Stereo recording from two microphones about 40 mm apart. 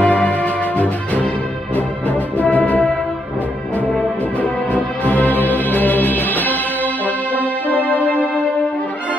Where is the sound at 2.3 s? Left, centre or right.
Left.